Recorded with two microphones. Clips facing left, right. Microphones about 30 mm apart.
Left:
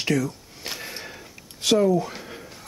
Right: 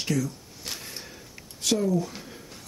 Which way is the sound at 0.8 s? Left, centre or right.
Left.